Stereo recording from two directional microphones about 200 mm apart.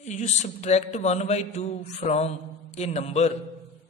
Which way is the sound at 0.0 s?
35° left (ahead or behind).